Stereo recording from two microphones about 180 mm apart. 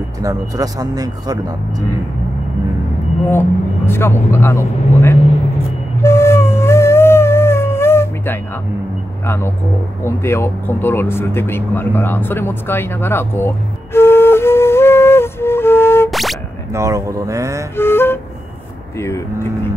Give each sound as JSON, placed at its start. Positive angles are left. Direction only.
{"t": 0.2, "sound": "speech", "side_deg": -20}
{"t": 3.3, "sound": "speech", "side_deg": 15}
{"t": 6.0, "sound": "music", "side_deg": 15}
{"t": 9.2, "sound": "speech", "side_deg": 15}
{"t": 13.9, "sound": "flute", "side_deg": 15}
{"t": 16.1, "sound": "boing", "side_deg": 0}
{"t": 16.7, "sound": "speech", "side_deg": -15}
{"t": 17.7, "sound": "music", "side_deg": 15}
{"t": 18.9, "sound": "speech", "side_deg": 15}